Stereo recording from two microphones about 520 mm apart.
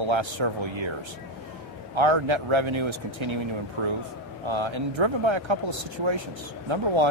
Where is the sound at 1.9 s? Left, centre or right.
Right.